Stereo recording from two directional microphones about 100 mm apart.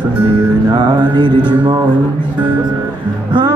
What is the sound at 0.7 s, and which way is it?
Music, 45° right (ahead or behind).